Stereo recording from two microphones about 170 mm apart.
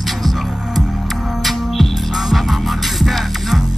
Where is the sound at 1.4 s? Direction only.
Centre (ahead or behind).